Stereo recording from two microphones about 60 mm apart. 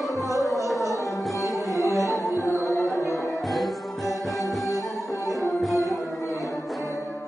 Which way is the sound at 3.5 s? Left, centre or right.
Centre.